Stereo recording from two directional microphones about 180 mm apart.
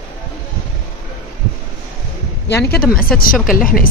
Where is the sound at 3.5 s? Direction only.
50° left (ahead or behind).